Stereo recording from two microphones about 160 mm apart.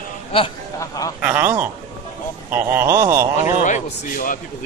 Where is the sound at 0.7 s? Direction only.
20° left (ahead or behind).